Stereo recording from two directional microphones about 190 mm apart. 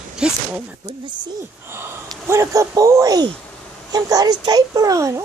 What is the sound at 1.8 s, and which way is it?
A child's voice, 15° right (ahead or behind).